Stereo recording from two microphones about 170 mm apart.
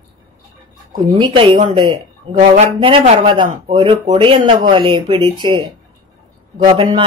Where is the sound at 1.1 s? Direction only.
30° right (ahead or behind).